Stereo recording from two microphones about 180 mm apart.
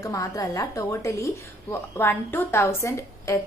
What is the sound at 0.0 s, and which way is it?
Speech, 20° left (ahead or behind).